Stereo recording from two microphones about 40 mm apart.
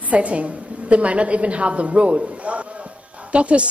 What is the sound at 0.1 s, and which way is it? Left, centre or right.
Speech, right.